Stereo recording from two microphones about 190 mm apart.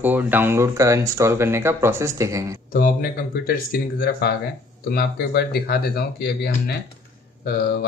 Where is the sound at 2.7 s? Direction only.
50° left (ahead or behind).